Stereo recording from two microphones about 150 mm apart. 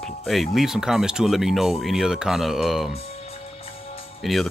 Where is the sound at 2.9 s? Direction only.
40° left (ahead or behind).